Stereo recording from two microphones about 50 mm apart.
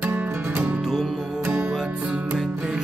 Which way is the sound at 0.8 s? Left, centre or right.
Centre.